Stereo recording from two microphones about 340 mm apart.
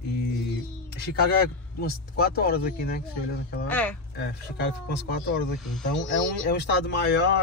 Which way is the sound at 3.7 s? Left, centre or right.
Centre.